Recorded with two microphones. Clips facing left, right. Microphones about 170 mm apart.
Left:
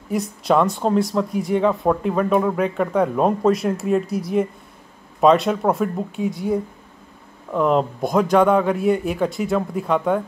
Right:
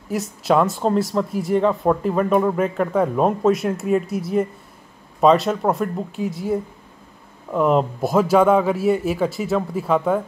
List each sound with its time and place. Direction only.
0.1 s speech: centre (ahead or behind)